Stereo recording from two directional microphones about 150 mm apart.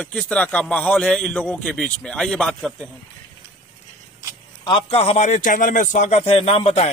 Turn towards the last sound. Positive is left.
turn(degrees=40)  # may be behind; listen again after turning